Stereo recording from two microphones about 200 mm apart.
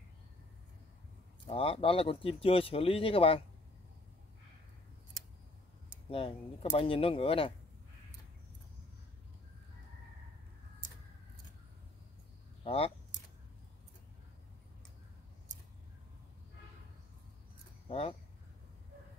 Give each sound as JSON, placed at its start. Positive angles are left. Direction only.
{"t": 1.5, "sound": "speech", "side_deg": 30}
{"t": 6.0, "sound": "speech", "side_deg": 30}
{"t": 12.6, "sound": "speech", "side_deg": 30}
{"t": 17.8, "sound": "speech", "side_deg": 30}